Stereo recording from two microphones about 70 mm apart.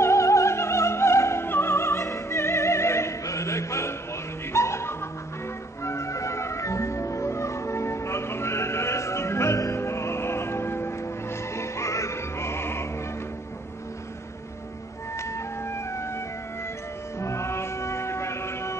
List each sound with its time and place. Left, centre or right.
0.0 s music: left
15.1 s music: left
17.2 s music: left